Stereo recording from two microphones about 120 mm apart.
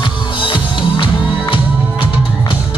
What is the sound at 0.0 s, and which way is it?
Music, 45° left (ahead or behind).